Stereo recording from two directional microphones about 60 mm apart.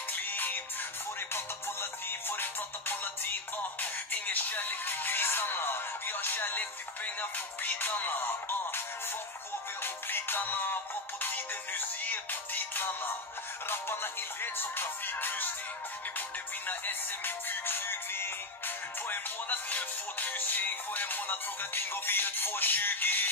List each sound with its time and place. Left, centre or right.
0.1 s music: left
10.0 s music: left
16.6 s music: left
19.0 s music: left